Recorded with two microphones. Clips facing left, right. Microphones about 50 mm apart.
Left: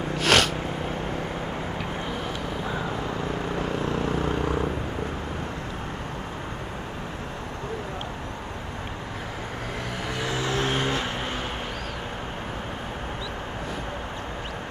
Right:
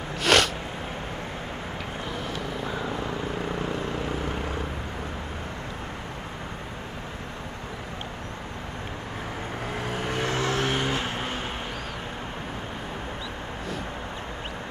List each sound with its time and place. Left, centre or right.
0.2 s snort: centre
3.6 s vehicle: left
10.0 s vehicle: right
10.3 s vehicle: right
10.9 s vehicle: right